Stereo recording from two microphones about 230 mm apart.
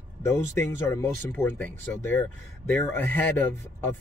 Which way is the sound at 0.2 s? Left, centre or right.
Centre.